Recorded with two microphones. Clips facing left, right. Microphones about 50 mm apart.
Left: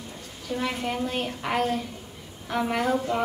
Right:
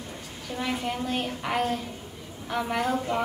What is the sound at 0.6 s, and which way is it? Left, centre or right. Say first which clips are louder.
A child's voice: left 1 dB; centre.